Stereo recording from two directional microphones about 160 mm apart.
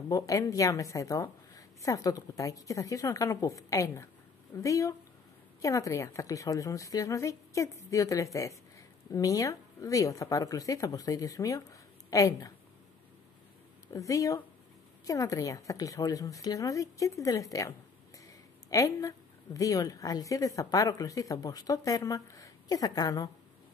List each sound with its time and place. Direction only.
0.1 s a woman's voice: 20° left (ahead or behind)
13.9 s a woman's voice: 20° left (ahead or behind)